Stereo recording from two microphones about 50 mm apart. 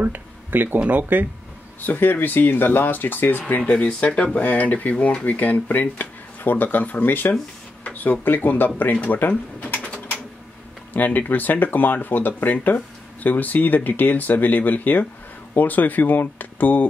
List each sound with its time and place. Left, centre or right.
0.0 s speech: right
1.8 s speech: left
3.7 s speech: left
10.9 s speech: left